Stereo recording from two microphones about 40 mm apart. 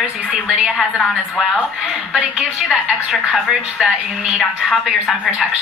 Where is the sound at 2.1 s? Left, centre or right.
Right.